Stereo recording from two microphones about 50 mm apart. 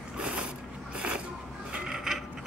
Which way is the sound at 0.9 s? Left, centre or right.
Right.